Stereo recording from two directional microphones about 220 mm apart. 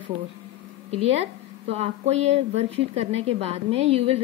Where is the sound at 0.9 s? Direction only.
30° right (ahead or behind).